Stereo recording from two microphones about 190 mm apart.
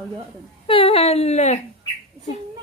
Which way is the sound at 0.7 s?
30° left (ahead or behind).